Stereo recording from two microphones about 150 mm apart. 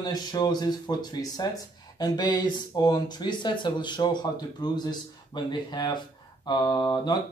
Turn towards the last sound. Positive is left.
turn(degrees=30)  # may be behind; listen again after turning